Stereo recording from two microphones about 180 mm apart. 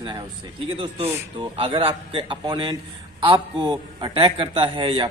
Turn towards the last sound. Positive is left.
turn(degrees=-30)  # may be behind; listen again after turning